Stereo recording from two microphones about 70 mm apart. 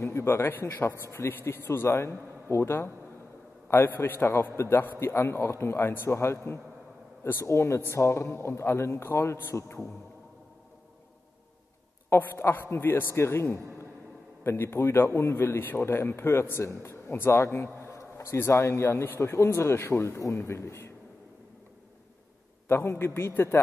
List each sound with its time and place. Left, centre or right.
0.0 s speech: left
12.1 s speech: left
22.7 s speech: left